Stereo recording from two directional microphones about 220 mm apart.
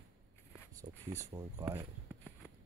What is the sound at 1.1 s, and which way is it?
Speech, 15° right (ahead or behind).